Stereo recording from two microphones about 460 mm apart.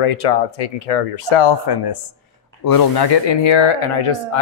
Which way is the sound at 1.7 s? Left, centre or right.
Left.